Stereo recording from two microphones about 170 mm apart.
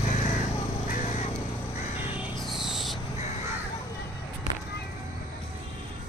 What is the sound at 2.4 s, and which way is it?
Cricket, centre (ahead or behind).